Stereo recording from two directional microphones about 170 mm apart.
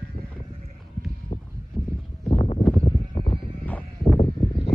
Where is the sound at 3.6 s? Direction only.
10° left (ahead or behind).